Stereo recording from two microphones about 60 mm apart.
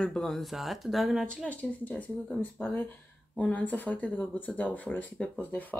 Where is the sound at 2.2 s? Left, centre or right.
Centre.